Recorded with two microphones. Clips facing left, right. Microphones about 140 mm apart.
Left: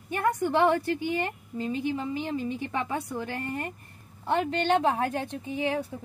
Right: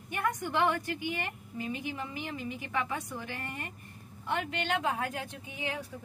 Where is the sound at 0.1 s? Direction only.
35° left (ahead or behind).